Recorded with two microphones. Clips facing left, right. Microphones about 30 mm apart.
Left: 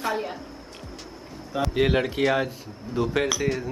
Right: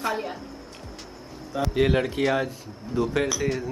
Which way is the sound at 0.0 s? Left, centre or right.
Centre.